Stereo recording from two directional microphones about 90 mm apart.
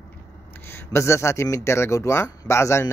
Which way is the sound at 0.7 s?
30° left (ahead or behind).